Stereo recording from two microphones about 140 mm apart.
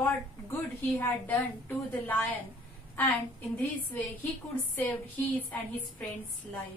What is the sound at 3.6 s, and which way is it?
A woman's voice, 10° left (ahead or behind).